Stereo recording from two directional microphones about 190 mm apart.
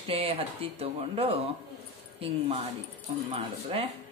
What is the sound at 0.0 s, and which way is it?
Speech, 30° right (ahead or behind).